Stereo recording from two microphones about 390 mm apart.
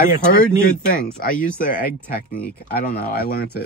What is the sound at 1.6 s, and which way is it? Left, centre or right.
Speech, left.